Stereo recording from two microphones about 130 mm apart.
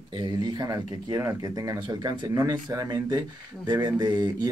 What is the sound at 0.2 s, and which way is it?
Speech, 30° right (ahead or behind).